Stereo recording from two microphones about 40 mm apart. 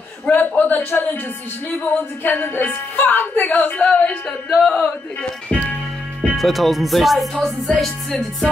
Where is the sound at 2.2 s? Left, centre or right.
Left.